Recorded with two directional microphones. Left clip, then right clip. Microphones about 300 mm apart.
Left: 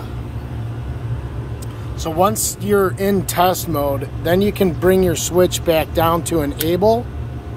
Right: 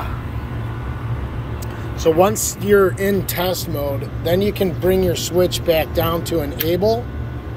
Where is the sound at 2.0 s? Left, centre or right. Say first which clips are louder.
Right 2 dB; centre.